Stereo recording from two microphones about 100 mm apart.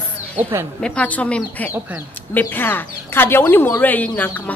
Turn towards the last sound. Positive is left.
turn(degrees=20)  # may be behind; listen again after turning